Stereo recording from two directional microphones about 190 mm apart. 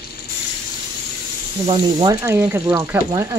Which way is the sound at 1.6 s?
25° right (ahead or behind).